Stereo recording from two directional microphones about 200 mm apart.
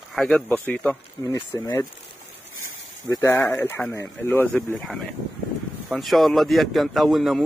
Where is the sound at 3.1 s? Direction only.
15° left (ahead or behind).